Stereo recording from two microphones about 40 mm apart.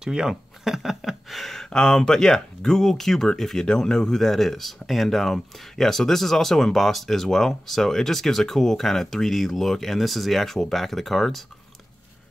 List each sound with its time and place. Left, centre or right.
0.0 s speech: centre
0.3 s a sound: centre
1.7 s speech: centre